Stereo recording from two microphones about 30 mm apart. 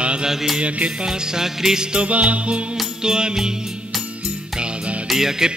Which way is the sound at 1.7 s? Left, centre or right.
Right.